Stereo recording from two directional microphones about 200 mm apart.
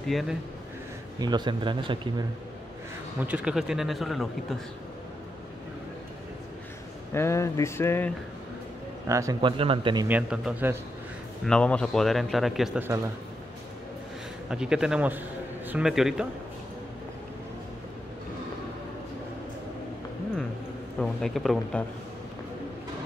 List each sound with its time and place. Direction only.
0.1 s speech: centre (ahead or behind)
1.2 s speech: 20° right (ahead or behind)
3.2 s speech: 5° right (ahead or behind)
7.2 s speech: 15° left (ahead or behind)
9.0 s speech: 15° right (ahead or behind)
10.0 s speech: 5° right (ahead or behind)
11.4 s speech: 5° left (ahead or behind)
14.5 s a man's voice: 5° right (ahead or behind)
21.0 s speech: centre (ahead or behind)